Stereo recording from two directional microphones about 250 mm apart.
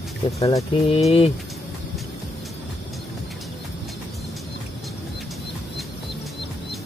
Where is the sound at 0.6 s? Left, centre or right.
Left.